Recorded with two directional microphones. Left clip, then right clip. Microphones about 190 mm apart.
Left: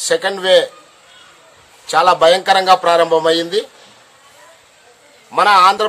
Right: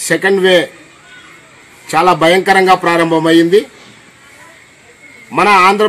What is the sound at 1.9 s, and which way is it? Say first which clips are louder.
A man's voice: right 1 dB; centre (ahead or behind).